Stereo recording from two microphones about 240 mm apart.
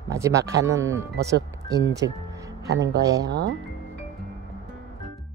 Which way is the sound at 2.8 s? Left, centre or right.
Centre.